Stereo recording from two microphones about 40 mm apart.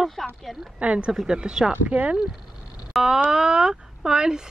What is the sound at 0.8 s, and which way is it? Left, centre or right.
Speech, right.